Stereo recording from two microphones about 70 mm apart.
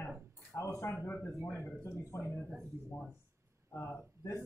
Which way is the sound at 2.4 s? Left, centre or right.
Centre.